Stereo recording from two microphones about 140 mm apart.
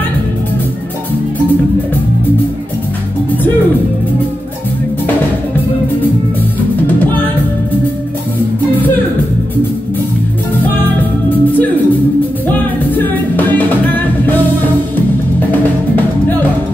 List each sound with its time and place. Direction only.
11.2 s music: 10° left (ahead or behind)